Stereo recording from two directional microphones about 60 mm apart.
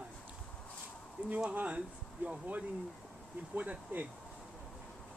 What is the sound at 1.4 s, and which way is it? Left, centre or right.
Speech, right.